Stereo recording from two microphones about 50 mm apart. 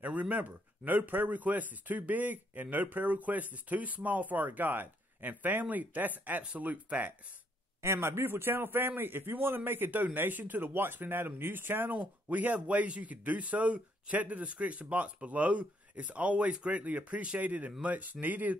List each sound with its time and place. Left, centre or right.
0.0 s speech: right
7.8 s speech: right
11.9 s speech: right